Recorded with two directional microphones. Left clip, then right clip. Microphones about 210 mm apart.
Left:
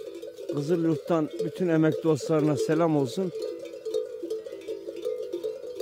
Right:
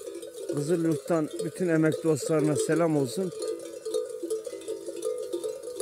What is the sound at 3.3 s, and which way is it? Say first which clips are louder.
Cowbell: even; 15° left (ahead or behind).